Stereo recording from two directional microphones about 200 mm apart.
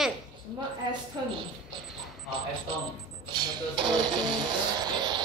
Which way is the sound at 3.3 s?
20° right (ahead or behind).